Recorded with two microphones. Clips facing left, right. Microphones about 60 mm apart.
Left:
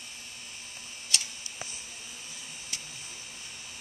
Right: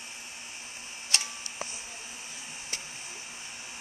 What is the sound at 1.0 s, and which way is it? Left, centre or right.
Camera, right.